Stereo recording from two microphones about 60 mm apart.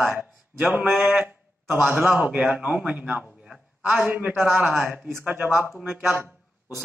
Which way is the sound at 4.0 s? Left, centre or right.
Centre.